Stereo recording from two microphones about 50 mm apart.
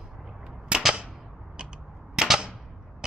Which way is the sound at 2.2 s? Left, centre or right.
Centre.